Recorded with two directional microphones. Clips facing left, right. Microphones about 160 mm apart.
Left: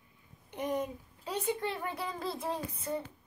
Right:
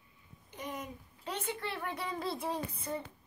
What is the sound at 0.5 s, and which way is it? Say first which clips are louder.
Babbling: left 7 dB; 60° left (ahead or behind).